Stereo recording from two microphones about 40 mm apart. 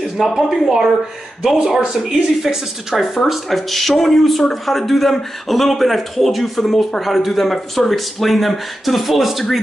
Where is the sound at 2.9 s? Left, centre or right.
Centre.